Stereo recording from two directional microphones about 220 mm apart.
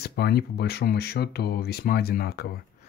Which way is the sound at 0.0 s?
45° left (ahead or behind).